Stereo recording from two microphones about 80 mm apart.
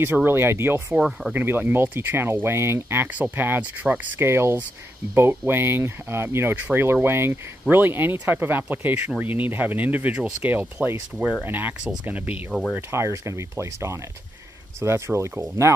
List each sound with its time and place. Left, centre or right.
0.0 s speech: right
0.9 s speech: centre
1.3 s speech: right
12.4 s speech: centre
12.9 s speech: right